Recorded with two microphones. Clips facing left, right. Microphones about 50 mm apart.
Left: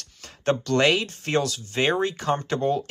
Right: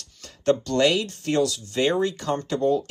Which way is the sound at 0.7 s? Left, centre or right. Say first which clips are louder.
Even; left.